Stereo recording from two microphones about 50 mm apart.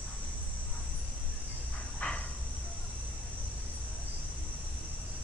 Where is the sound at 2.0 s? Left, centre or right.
Left.